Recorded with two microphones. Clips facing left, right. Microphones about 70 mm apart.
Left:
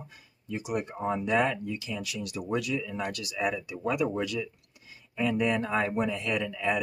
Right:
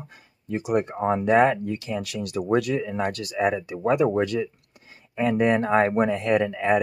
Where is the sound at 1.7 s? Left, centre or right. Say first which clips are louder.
Right 6 dB; right.